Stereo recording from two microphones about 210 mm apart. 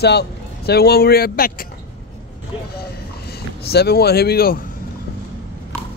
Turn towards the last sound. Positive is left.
turn(degrees=45)  # may be behind; listen again after turning